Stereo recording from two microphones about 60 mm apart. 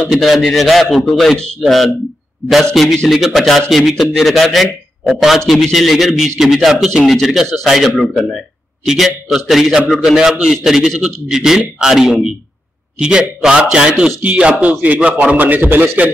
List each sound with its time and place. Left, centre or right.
0.1 s a man's voice: centre; by 16.1 s right